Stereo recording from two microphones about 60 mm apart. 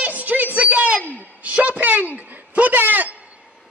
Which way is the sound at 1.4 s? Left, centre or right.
Right.